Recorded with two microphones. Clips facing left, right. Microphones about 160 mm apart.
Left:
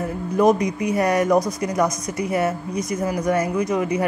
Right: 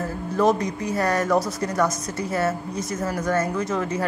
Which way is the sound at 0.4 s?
15° left (ahead or behind).